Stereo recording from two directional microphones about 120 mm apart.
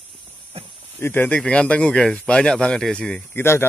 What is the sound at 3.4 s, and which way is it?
Speech, 20° left (ahead or behind).